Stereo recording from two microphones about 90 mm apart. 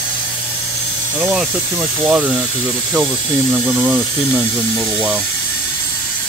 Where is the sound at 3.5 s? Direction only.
20° right (ahead or behind).